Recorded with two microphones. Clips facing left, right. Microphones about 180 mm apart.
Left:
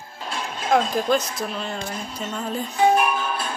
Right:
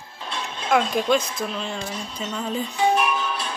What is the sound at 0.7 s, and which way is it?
Speech, centre (ahead or behind).